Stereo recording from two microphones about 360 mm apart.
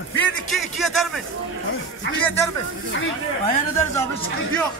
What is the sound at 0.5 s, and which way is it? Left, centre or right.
Speech, centre.